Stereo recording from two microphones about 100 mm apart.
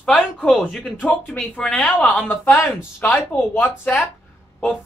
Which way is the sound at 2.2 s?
25° left (ahead or behind).